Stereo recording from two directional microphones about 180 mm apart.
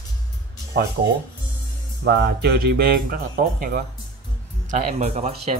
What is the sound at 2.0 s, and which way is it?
Speech, 70° right (ahead or behind).